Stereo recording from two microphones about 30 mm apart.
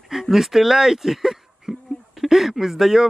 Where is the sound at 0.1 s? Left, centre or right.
Centre.